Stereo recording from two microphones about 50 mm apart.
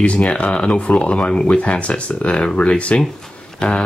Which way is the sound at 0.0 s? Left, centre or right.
Left.